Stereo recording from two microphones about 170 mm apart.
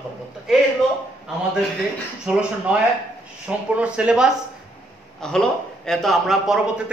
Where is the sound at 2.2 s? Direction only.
5° right (ahead or behind).